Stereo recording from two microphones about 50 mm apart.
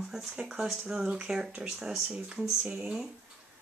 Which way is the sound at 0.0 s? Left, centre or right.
Centre.